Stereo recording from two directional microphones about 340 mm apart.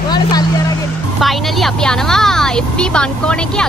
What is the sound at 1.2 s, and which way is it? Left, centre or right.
A woman's voice, centre.